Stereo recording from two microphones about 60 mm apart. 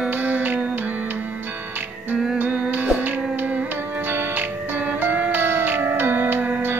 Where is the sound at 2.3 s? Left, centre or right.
Right.